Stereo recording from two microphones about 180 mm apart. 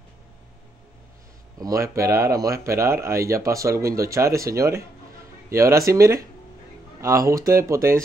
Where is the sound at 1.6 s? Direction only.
20° right (ahead or behind).